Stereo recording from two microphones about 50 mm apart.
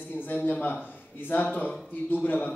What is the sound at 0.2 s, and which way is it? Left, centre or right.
A man's voice, left.